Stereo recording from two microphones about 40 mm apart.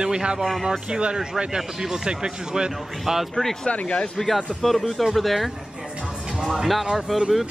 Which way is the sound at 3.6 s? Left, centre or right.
Left.